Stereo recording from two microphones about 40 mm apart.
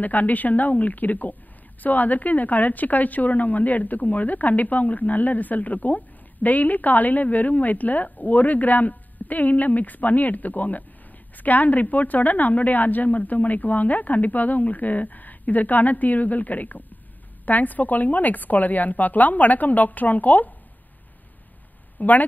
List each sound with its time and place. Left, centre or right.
0.0 s a woman's voice: left
22.0 s speech: left